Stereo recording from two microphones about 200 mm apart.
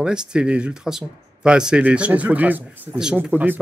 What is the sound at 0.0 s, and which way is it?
Speech, 5° right (ahead or behind).